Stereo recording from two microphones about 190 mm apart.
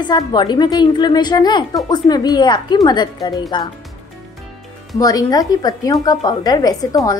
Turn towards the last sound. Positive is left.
turn(degrees=20)  # may be behind; listen again after turning